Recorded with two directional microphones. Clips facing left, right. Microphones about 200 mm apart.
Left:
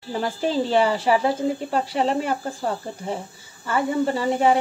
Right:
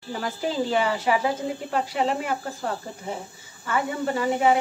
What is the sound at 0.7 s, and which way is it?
Speech, 30° left (ahead or behind).